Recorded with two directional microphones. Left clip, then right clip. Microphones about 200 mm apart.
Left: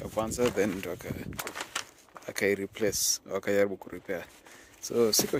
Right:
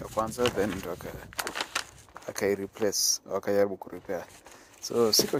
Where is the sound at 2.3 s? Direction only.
15° left (ahead or behind).